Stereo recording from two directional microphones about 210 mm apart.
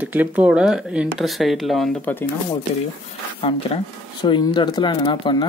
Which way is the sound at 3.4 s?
25° left (ahead or behind).